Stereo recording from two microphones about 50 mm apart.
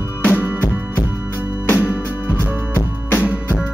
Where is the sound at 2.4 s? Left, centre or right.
Left.